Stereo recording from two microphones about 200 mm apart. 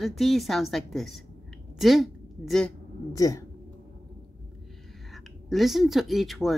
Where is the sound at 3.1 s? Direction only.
15° left (ahead or behind).